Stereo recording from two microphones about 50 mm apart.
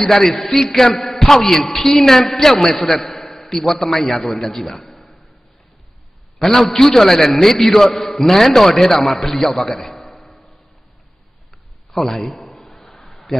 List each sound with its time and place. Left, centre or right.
0.0 s a man's voice: centre
6.4 s a man's voice: centre
10.1 s tick-tock: centre
11.9 s a man's voice: centre
12.5 s a sound: centre